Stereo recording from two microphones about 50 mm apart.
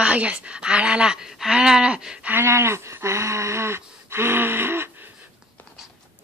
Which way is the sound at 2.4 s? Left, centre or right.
Right.